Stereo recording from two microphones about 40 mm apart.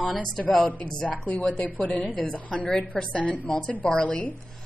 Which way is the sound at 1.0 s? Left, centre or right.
Left.